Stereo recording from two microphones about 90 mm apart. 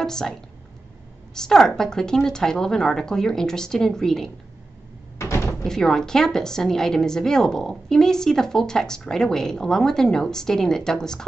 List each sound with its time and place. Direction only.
0.0 s speech: 5° left (ahead or behind)
5.2 s door: 30° left (ahead or behind)
5.6 s a woman's voice: 5° left (ahead or behind)